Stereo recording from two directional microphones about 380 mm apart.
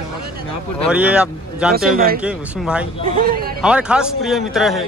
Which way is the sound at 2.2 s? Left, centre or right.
Centre.